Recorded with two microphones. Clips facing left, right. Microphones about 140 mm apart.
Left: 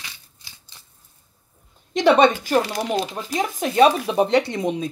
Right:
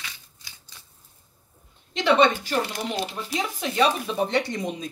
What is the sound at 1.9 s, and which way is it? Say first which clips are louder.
Speech: left 4 dB; 45° left (ahead or behind).